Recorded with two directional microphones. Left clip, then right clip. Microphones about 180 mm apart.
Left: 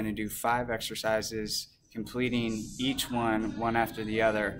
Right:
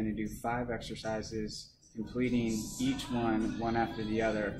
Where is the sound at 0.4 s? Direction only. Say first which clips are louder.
Left 8 dB; 15° left (ahead or behind).